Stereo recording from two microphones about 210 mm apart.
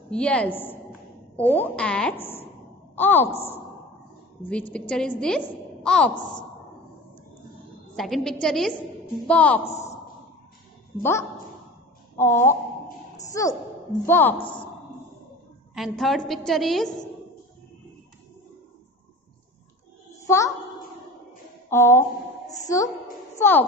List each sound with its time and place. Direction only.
0.1 s a woman's voice: 5° left (ahead or behind)
3.3 s speech: 30° left (ahead or behind)
4.5 s a woman's voice: 5° left (ahead or behind)
7.9 s a woman's voice: centre (ahead or behind)
9.7 s a woman's voice: 30° left (ahead or behind)
11.0 s a woman's voice: 10° left (ahead or behind)
15.7 s a woman's voice: centre (ahead or behind)
21.6 s a woman's voice: 10° left (ahead or behind)